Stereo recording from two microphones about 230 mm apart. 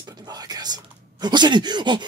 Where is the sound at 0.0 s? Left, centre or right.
Centre.